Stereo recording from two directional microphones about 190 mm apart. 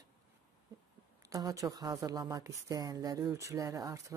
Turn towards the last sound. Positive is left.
turn(degrees=-15)  # may be behind; listen again after turning